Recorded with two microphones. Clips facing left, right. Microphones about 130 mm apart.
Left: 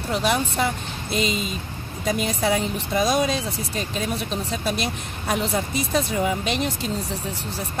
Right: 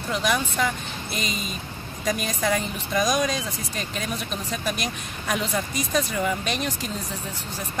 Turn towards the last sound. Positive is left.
turn(degrees=20)  # may be behind; listen again after turning